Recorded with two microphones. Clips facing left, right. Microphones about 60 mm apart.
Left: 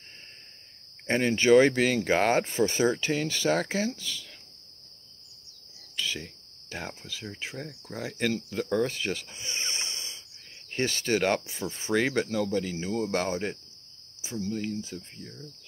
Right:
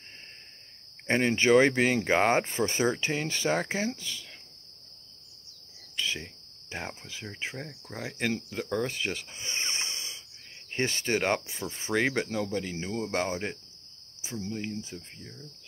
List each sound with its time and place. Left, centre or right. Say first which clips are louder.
1.0 s speech: left 1 dB; right
5.9 s speech: even; right
8.5 s speech: left 3 dB; centre
14.2 s speech: left 3 dB; right